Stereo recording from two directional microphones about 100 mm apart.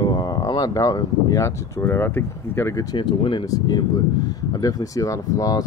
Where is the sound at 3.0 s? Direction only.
55° left (ahead or behind).